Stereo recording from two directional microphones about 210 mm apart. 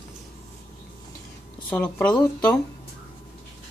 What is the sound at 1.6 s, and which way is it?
Speech, 5° left (ahead or behind).